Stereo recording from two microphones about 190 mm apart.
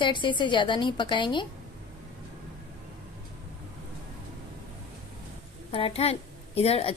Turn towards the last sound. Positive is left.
turn(degrees=30)  # may be behind; listen again after turning